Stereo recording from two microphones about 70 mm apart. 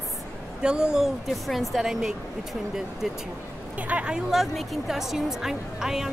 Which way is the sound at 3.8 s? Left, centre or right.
Centre.